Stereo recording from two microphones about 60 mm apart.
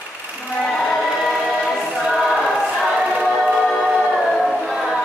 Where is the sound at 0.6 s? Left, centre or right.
Centre.